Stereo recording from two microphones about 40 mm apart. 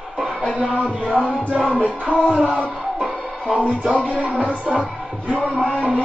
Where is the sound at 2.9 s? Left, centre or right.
Centre.